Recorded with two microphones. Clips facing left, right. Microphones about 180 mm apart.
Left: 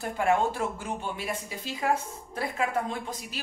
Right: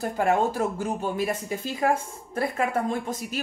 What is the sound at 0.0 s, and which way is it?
Speech, 40° right (ahead or behind).